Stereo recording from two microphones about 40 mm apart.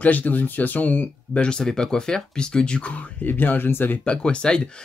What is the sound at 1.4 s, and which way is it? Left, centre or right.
Speech, centre.